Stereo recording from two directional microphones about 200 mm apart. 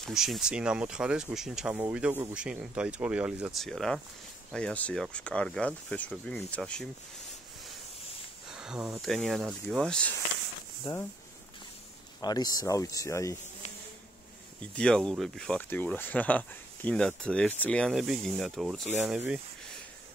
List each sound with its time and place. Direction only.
0.0 s speech: centre (ahead or behind)
8.5 s speech: 5° right (ahead or behind)
10.8 s speech: 20° left (ahead or behind)
12.2 s speech: 20° left (ahead or behind)
14.8 s speech: 5° left (ahead or behind)